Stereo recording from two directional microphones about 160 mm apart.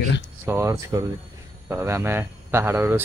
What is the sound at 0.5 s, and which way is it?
A man's voice, 20° right (ahead or behind).